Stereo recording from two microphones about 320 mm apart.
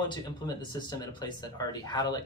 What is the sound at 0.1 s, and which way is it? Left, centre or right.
Speech, centre.